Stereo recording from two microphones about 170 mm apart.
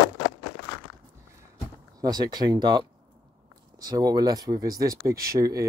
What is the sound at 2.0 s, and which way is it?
Speech, 25° right (ahead or behind).